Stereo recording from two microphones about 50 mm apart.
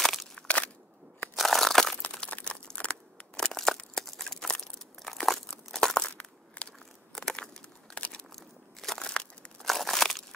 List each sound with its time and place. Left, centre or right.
0.0 s a sound: centre
1.3 s crushing: centre
2.1 s crumpling: left
3.3 s crumpling: centre
6.1 s crushing: left
7.1 s a sound: centre
7.9 s crumpling: left
8.4 s crunch: centre
9.6 s crushing: centre